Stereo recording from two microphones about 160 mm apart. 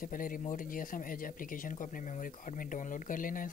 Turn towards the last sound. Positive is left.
turn(degrees=60)  # may be behind; listen again after turning